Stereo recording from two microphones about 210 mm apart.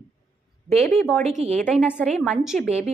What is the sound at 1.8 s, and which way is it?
Speech, 5° left (ahead or behind).